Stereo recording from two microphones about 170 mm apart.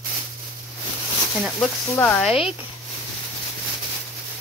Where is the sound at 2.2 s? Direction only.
5° right (ahead or behind).